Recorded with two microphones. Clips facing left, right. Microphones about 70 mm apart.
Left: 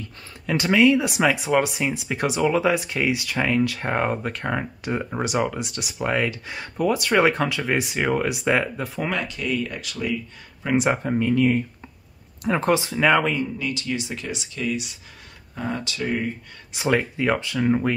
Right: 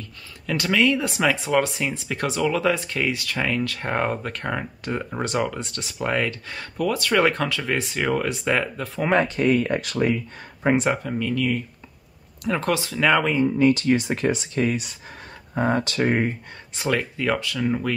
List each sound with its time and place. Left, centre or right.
0.5 s speech: centre
9.1 s speech: right
11.1 s speech: left
13.0 s speech: centre
13.6 s speech: right
16.7 s speech: centre